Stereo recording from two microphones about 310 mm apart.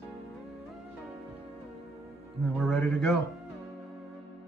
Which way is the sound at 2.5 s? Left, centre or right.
Centre.